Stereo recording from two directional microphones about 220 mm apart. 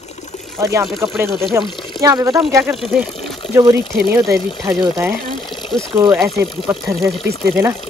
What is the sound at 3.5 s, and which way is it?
Speech, 15° right (ahead or behind).